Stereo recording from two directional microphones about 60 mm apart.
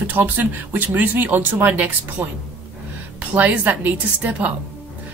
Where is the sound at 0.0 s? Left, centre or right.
Right.